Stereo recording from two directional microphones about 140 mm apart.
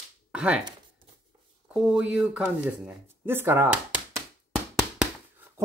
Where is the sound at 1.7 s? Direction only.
5° right (ahead or behind).